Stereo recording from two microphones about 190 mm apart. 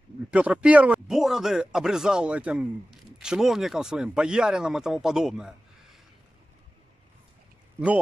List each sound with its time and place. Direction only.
0.3 s speech: 5° right (ahead or behind)